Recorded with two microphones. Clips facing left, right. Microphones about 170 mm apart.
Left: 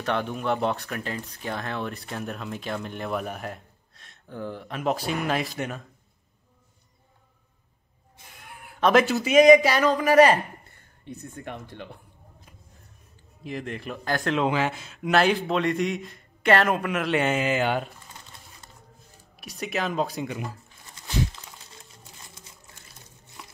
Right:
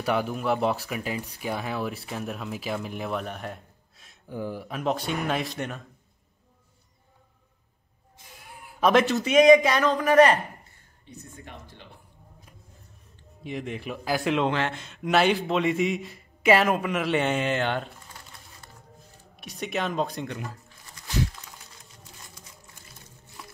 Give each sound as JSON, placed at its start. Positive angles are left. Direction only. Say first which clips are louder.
{"t": 0.0, "sound": "speech", "louder": "right 1 dB", "side_deg": -5}
{"t": 8.7, "sound": "speech", "louder": "left 1 dB", "side_deg": 0}
{"t": 11.1, "sound": "speech", "louder": "left 7 dB", "side_deg": 60}
{"t": 13.4, "sound": "speech", "louder": "even", "side_deg": 0}
{"t": 19.3, "sound": "speech", "louder": "even", "side_deg": 0}
{"t": 21.0, "sound": "crumpling", "louder": "left 1 dB", "side_deg": 25}